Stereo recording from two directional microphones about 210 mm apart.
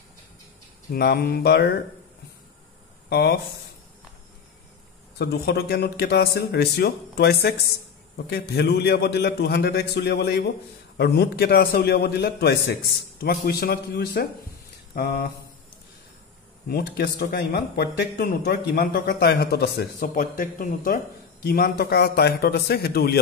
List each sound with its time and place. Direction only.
0.9 s speech: 45° left (ahead or behind)
3.1 s speech: 50° left (ahead or behind)
5.2 s speech: 50° left (ahead or behind)
16.6 s speech: 45° left (ahead or behind)